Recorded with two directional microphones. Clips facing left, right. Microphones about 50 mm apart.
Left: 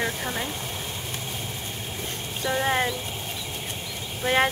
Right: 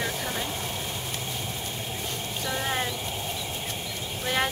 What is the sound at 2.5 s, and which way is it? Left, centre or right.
Speech, left.